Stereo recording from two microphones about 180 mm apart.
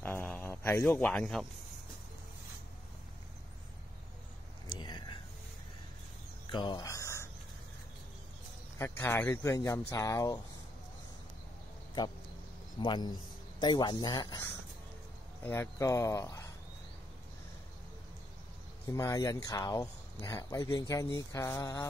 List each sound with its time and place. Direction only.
0.0 s a sound: 10° left (ahead or behind)
4.6 s whispering: 25° left (ahead or behind)
6.5 s a sound: 25° left (ahead or behind)
8.7 s speech: 15° left (ahead or behind)
12.7 s speech: 25° left (ahead or behind)
15.4 s speech: 15° left (ahead or behind)
18.9 s speech: 15° left (ahead or behind)